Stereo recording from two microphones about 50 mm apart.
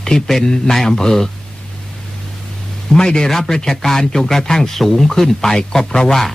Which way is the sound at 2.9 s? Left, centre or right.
Centre.